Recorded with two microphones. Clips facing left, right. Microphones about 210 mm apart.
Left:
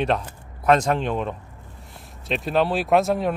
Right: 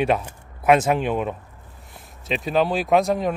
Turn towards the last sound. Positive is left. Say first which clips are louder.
# even
turn(degrees=0)  # may be behind; listen again after turning